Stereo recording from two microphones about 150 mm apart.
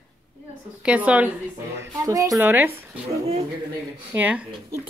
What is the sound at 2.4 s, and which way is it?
Speech, 10° right (ahead or behind).